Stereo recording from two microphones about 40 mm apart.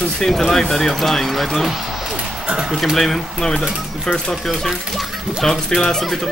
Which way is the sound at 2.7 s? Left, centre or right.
Centre.